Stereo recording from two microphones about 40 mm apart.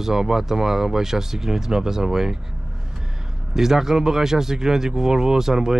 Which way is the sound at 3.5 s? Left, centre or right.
Centre.